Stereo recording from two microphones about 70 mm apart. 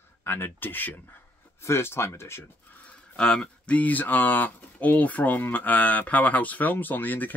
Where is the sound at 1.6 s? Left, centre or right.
Left.